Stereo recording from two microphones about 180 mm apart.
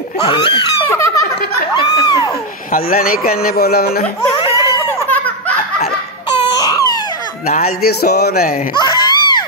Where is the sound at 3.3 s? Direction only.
55° left (ahead or behind).